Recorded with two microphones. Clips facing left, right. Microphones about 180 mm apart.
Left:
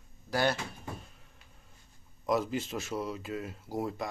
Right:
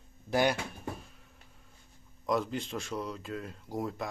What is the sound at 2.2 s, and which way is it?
Speech, 5° left (ahead or behind).